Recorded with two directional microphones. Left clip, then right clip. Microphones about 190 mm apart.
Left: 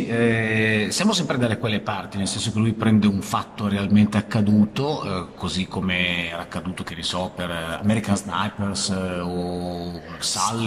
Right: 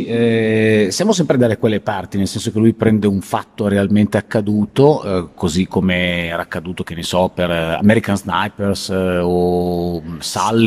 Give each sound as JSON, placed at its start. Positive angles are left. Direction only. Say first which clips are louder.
{"t": 0.1, "sound": "speech", "louder": "right 6 dB", "side_deg": -20}
{"t": 7.1, "sound": "speech", "louder": "right 11 dB", "side_deg": -50}